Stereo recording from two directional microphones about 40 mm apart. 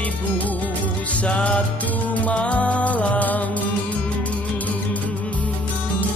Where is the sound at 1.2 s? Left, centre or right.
Left.